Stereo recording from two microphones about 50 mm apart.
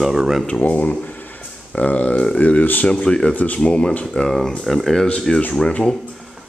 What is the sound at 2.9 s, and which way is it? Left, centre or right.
Speech, centre.